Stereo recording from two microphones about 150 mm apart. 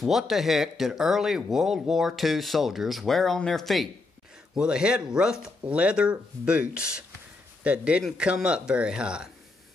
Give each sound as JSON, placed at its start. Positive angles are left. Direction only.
{"t": 0.0, "sound": "speech", "side_deg": 0}